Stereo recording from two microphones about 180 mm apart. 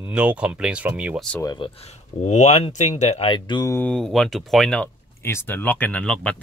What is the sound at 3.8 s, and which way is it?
Speech, 5° left (ahead or behind).